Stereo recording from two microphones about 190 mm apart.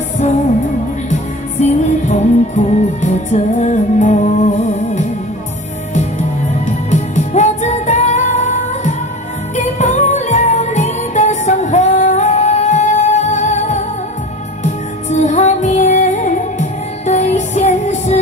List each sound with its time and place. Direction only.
1.1 s music: 40° left (ahead or behind)
6.6 s music: 40° left (ahead or behind)